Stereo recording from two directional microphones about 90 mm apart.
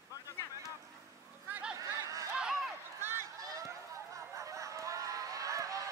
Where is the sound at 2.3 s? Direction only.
10° right (ahead or behind).